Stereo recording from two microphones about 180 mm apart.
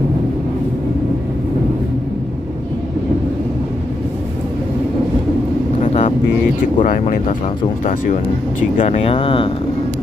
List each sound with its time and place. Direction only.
5.8 s vehicle: 40° left (ahead or behind)
6.8 s speech: 45° left (ahead or behind); by 9.5 s 30° left (ahead or behind)